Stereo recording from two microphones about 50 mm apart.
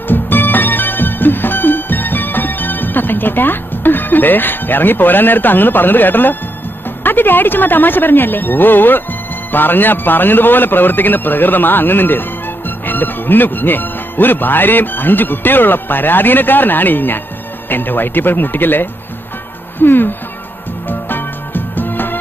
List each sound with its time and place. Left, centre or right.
0.1 s music: left
7.0 s a man's voice: left
21.1 s music: left